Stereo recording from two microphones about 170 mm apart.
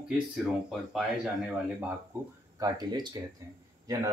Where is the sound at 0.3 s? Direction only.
Centre (ahead or behind).